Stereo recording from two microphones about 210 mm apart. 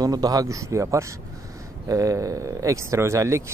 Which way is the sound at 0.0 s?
15° right (ahead or behind).